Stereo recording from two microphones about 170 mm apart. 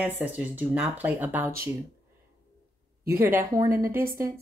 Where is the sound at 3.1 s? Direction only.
15° right (ahead or behind).